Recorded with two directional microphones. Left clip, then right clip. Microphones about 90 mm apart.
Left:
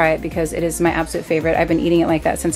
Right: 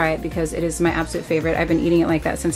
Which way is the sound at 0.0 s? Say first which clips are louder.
Left 4 dB; 25° left (ahead or behind).